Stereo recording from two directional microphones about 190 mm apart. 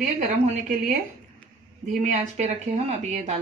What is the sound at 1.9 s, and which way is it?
Speech, 40° right (ahead or behind).